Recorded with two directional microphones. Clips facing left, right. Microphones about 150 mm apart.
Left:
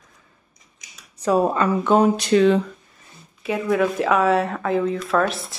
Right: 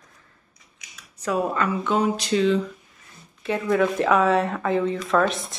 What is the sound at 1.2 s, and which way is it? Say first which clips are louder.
Speech: left 5 dB; 30° left (ahead or behind).